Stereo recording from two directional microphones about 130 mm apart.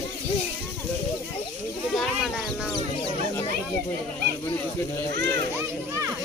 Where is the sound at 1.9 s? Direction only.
Centre (ahead or behind).